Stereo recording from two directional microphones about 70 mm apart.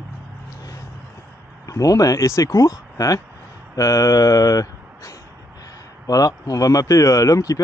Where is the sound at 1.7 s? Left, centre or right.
Left.